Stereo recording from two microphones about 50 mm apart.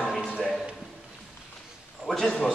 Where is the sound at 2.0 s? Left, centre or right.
Centre.